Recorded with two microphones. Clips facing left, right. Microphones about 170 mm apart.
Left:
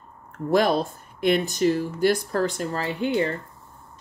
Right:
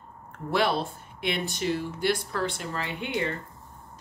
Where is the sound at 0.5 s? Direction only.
45° left (ahead or behind).